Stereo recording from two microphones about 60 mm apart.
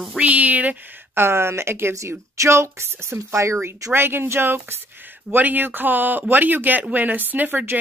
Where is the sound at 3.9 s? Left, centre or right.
Right.